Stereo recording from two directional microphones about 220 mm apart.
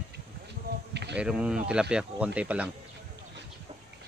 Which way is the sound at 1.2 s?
5° right (ahead or behind).